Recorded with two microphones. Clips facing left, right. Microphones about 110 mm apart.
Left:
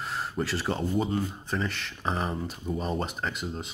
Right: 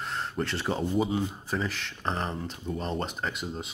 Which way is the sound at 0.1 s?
5° left (ahead or behind).